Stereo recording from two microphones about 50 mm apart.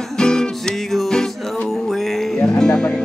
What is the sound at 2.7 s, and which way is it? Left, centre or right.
Music, centre.